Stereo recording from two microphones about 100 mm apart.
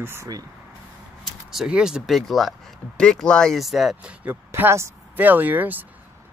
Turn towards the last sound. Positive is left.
turn(degrees=-20)  # may be behind; listen again after turning